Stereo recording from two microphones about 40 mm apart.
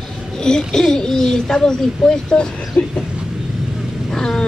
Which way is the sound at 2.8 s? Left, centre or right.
Left.